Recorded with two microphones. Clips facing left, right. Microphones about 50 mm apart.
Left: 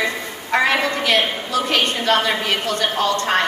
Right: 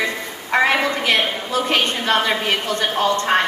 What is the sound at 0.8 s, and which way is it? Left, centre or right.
A woman's voice, right.